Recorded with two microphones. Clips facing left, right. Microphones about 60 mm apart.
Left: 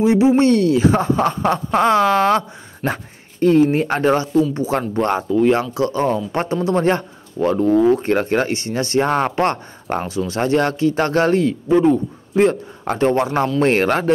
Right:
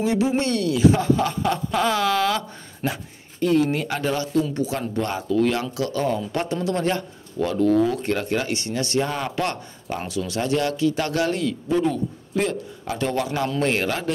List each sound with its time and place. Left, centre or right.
0.0 s speech: left
4.3 s speech: left
4.6 s speech: left
5.3 s speech: left
10.0 s speech: left